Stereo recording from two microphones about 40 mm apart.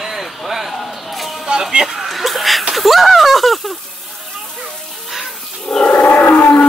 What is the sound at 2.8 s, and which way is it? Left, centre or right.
Speech, centre.